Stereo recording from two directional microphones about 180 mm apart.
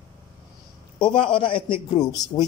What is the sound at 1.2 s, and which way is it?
Speech, 30° left (ahead or behind).